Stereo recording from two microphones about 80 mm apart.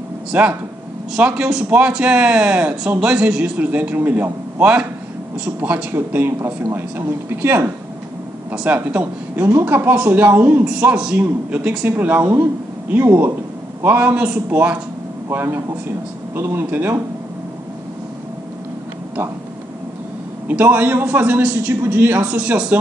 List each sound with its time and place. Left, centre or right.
0.3 s a man's voice: centre
15.3 s a man's voice: right
20.4 s a man's voice: right